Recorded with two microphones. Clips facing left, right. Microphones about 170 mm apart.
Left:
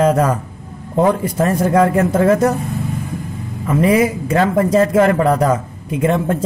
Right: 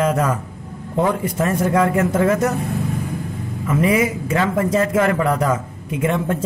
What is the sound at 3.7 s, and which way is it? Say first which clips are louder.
A man's voice: left 4 dB; 35° left (ahead or behind).